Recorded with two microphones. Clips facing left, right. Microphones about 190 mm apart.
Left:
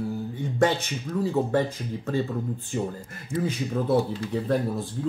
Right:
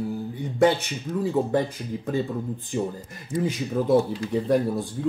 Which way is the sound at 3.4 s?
10° right (ahead or behind).